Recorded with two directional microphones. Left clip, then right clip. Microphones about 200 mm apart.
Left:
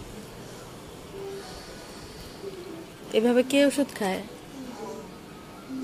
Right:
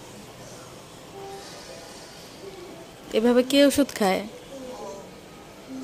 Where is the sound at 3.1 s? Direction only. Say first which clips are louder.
Right 2 dB; 20° right (ahead or behind).